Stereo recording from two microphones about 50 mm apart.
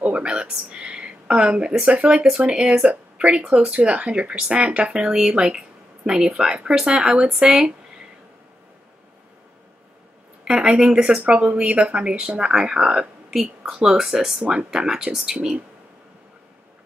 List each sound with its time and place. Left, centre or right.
0.0 s a sound: right
1.9 s speech: right
10.4 s speech: centre